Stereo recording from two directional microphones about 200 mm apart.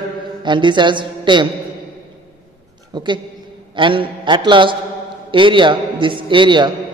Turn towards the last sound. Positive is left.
turn(degrees=-25)  # may be behind; listen again after turning